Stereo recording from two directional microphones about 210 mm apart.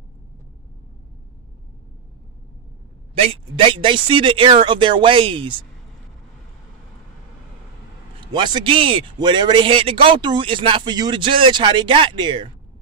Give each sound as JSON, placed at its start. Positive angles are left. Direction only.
{"t": 3.2, "sound": "speech", "side_deg": -25}
{"t": 8.3, "sound": "speech", "side_deg": -20}